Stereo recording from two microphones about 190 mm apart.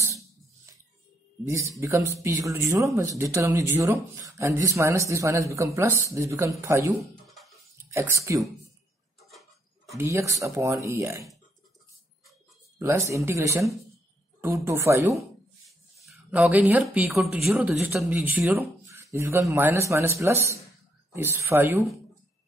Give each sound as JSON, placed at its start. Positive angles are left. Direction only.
{"t": 1.5, "sound": "speech", "side_deg": -15}
{"t": 7.2, "sound": "music", "side_deg": 0}
{"t": 7.9, "sound": "speech", "side_deg": -15}
{"t": 9.3, "sound": "tick-tock", "side_deg": 0}
{"t": 9.9, "sound": "speech", "side_deg": -15}
{"t": 12.7, "sound": "speech", "side_deg": -15}
{"t": 16.0, "sound": "speech", "side_deg": -5}